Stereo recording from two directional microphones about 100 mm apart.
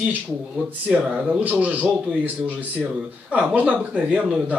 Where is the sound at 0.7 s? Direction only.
15° right (ahead or behind).